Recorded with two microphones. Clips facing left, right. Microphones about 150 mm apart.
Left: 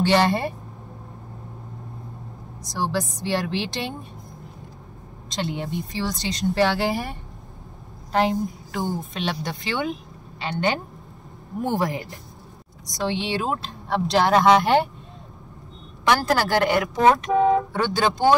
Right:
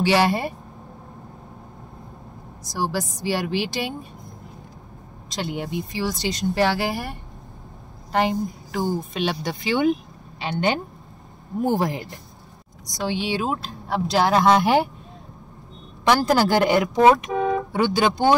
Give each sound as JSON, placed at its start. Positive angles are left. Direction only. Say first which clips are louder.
{"t": 0.0, "sound": "speech", "louder": "even", "side_deg": -10}
{"t": 2.7, "sound": "speech", "louder": "even", "side_deg": -10}
{"t": 5.3, "sound": "speech", "louder": "even", "side_deg": -5}
{"t": 11.7, "sound": "speech", "louder": "even", "side_deg": -25}
{"t": 12.8, "sound": "speech", "louder": "even", "side_deg": -5}
{"t": 16.1, "sound": "speech", "louder": "right 2 dB", "side_deg": -15}